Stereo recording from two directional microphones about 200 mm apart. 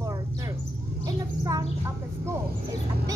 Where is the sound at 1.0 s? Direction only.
15° right (ahead or behind).